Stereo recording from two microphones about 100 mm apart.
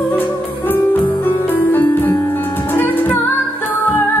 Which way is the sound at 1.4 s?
20° left (ahead or behind).